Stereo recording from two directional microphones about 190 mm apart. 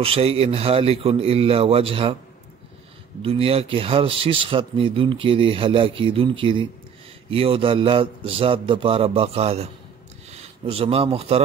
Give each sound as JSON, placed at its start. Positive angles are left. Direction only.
{"t": 0.0, "sound": "a man's voice", "side_deg": -30}
{"t": 3.2, "sound": "speech", "side_deg": -30}